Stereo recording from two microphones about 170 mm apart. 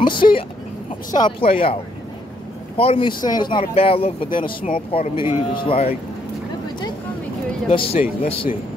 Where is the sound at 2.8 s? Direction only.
30° left (ahead or behind).